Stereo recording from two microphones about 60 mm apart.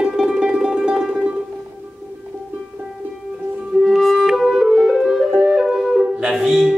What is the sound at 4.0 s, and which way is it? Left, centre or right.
Flute, centre.